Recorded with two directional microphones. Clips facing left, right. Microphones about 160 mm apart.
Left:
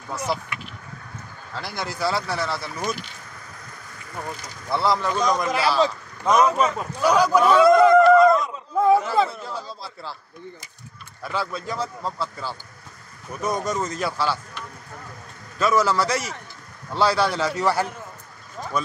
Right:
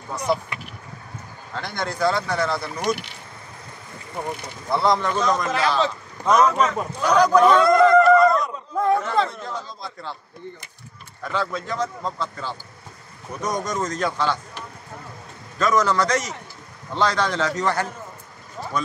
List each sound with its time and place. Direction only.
1.6 s speech: 5° left (ahead or behind)
4.6 s a man's voice: centre (ahead or behind)
11.3 s a man's voice: 10° left (ahead or behind)
15.6 s a man's voice: 10° left (ahead or behind)
18.6 s a sound: 20° right (ahead or behind)